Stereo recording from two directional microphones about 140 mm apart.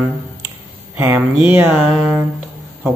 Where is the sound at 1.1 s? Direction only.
10° right (ahead or behind).